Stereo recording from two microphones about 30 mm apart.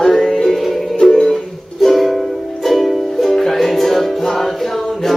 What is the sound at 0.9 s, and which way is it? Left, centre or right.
Music, left.